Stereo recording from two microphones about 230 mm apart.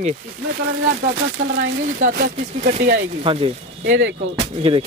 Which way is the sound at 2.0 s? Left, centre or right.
Right.